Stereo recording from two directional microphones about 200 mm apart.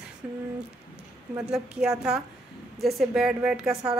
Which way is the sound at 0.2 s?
10° right (ahead or behind).